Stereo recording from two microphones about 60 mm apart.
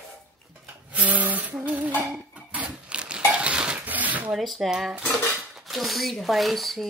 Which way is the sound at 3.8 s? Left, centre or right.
Right.